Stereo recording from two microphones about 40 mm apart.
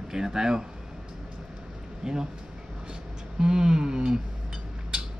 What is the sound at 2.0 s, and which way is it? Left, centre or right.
Speech, centre.